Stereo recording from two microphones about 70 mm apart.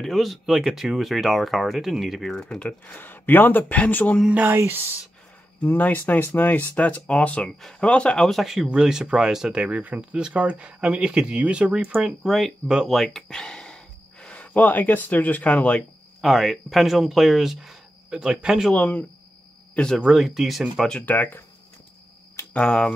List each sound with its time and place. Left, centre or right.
0.0 s speech: centre
2.3 s speech: centre
4.3 s a sound: right
4.6 s speech: right
5.6 s speech: left
8.3 s speech: centre
12.0 s speech: centre
16.2 s speech: centre
18.7 s speech: centre
20.2 s speech: centre
21.0 s speech: left
22.5 s speech: centre